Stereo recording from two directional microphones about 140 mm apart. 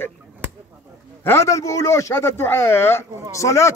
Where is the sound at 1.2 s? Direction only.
20° left (ahead or behind).